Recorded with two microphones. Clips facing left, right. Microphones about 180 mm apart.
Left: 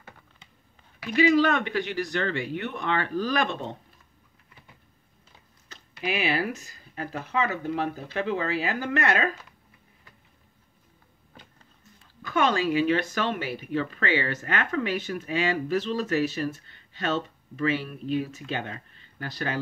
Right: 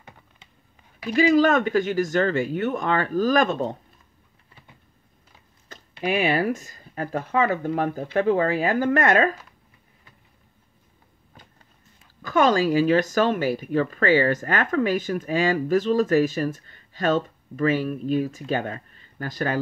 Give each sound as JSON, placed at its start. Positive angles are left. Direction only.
{"t": 1.1, "sound": "speech", "side_deg": -40}
{"t": 5.7, "sound": "speech", "side_deg": -45}
{"t": 12.2, "sound": "speech", "side_deg": -40}